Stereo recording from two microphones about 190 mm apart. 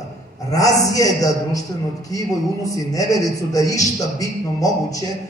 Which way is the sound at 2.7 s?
20° left (ahead or behind).